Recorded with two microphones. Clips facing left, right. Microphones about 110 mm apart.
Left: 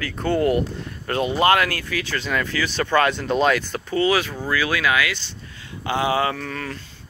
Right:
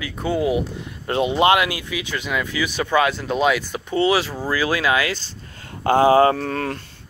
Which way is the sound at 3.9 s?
25° right (ahead or behind).